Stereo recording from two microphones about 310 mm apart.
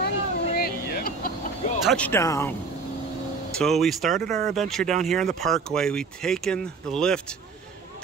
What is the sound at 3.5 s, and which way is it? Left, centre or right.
Speech, centre.